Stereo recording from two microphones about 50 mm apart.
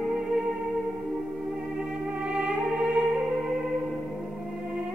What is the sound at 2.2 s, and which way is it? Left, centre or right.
Music, centre.